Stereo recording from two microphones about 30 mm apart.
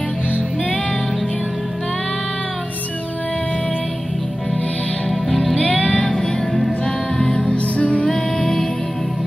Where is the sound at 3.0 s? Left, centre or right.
Left.